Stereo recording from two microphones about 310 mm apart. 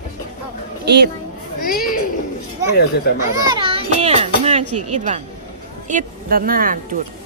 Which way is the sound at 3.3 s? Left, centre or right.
Centre.